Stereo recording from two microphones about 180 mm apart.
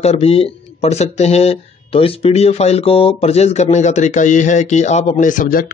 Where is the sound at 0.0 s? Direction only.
35° left (ahead or behind).